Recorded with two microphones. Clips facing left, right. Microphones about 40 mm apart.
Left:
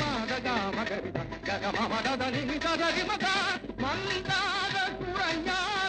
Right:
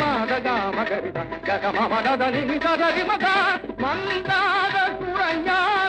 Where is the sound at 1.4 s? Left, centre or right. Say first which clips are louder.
Right 9 dB; centre.